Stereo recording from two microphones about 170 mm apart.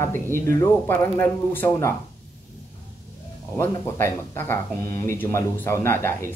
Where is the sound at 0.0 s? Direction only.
15° left (ahead or behind).